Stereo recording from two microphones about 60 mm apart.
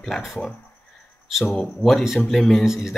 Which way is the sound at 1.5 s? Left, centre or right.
Centre.